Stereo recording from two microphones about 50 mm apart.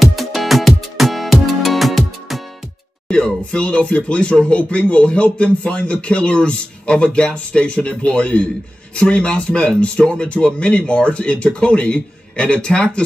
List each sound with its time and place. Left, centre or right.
0.0 s music: centre
3.5 s speech: left